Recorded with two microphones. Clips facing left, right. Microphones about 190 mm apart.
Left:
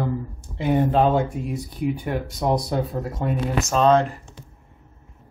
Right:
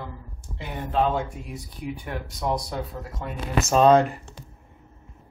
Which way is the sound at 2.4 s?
35° left (ahead or behind).